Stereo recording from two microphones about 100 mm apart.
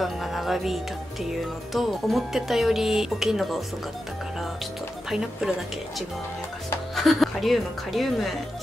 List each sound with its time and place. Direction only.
0.0 s music: centre (ahead or behind)
7.0 s music: centre (ahead or behind)